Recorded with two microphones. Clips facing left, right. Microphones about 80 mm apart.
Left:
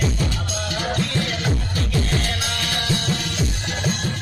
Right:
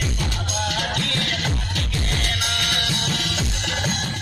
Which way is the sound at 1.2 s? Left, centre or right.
Right.